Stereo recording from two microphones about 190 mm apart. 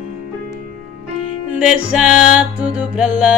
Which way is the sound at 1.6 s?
5° right (ahead or behind).